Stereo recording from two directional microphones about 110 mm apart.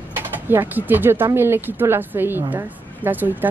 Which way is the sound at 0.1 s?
20° right (ahead or behind).